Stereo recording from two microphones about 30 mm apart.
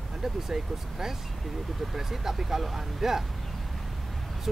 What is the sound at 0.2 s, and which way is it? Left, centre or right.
Speech, centre.